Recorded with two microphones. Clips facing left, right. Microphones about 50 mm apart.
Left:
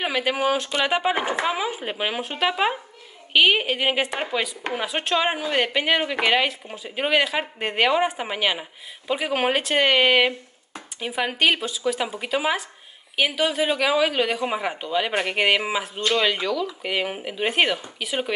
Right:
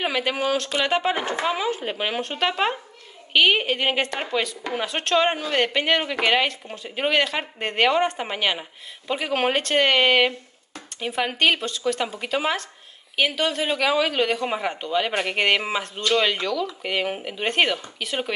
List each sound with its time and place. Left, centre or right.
0.0 s a woman's voice: centre